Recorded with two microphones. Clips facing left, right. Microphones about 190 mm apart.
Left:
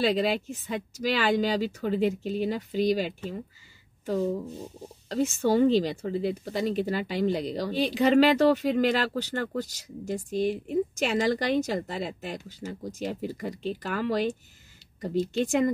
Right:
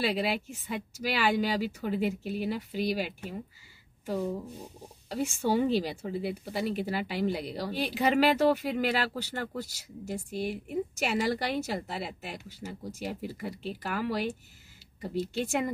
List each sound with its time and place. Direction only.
0.0 s speech: 5° right (ahead or behind)
5.1 s speech: 10° right (ahead or behind)